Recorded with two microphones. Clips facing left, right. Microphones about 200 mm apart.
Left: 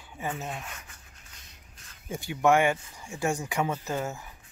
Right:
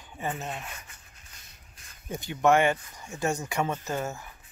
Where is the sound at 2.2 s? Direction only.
15° left (ahead or behind).